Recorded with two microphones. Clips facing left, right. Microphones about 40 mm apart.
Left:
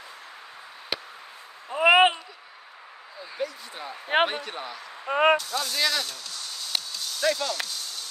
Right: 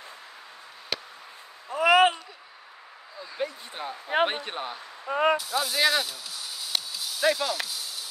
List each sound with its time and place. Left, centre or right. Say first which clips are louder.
0.9 s a sound: left 1 dB; centre
1.7 s a sound: left 1 dB; left
3.3 s speech: even; right
3.9 s speech: left 2 dB; left
4.3 s speech: right 1 dB; right
4.7 s speech: left 4 dB; left
5.4 s spray: right 2 dB; centre